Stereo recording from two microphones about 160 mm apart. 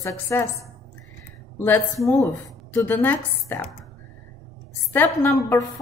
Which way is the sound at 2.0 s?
15° left (ahead or behind).